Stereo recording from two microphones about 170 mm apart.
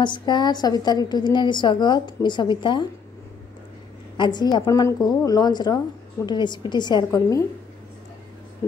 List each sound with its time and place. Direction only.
0.0 s a woman's voice: 25° left (ahead or behind)
4.2 s a woman's voice: 25° left (ahead or behind)